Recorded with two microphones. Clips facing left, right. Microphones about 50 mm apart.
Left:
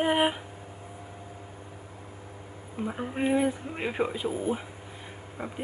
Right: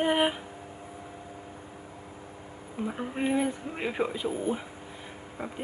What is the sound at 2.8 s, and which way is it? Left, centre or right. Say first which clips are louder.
Speech: left 1 dB; centre.